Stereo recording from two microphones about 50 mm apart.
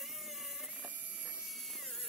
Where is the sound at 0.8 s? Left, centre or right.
Right.